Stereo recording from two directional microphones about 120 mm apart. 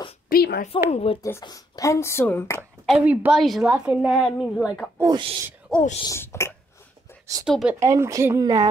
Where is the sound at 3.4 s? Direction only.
Centre (ahead or behind).